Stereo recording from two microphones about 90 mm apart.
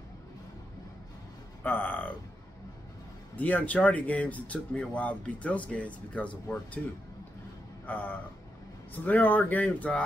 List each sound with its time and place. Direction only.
1.6 s speech: 20° left (ahead or behind)
3.3 s speech: 15° left (ahead or behind)
7.8 s speech: 20° left (ahead or behind)